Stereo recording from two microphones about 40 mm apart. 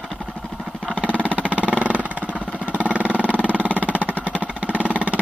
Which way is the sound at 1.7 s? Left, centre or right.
Right.